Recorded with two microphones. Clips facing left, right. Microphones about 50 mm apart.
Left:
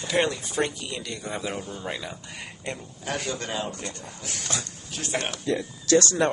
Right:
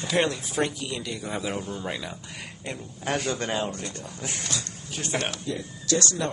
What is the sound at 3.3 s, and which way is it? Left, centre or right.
Speech, right.